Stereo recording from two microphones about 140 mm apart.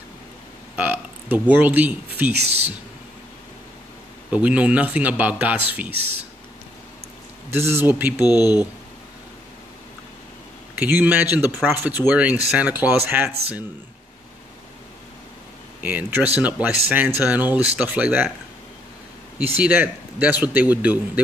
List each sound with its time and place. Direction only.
0.7 s burping: 10° right (ahead or behind)
1.5 s speech: 10° right (ahead or behind)
2.4 s speech: 50° right (ahead or behind)
4.3 s speech: 10° right (ahead or behind)
7.5 s speech: 15° right (ahead or behind)
8.3 s speech: 30° left (ahead or behind)
10.8 s speech: 15° right (ahead or behind)
15.8 s speech: 10° right (ahead or behind)
19.3 s speech: 10° right (ahead or behind)